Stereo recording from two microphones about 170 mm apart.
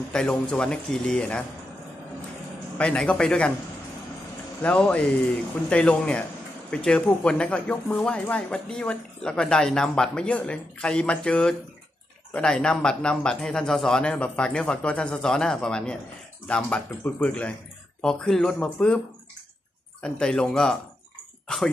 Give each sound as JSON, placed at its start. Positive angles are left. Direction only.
{"t": 0.1, "sound": "speech", "side_deg": 5}
{"t": 2.8, "sound": "speech", "side_deg": 5}
{"t": 4.6, "sound": "speech", "side_deg": 5}
{"t": 20.0, "sound": "speech", "side_deg": 5}